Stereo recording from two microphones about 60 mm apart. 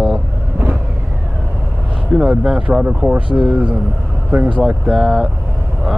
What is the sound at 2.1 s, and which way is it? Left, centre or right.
Speech, centre.